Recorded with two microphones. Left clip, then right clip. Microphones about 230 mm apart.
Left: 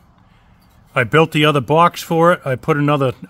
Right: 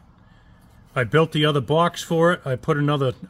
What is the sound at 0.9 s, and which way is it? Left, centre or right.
Speech, left.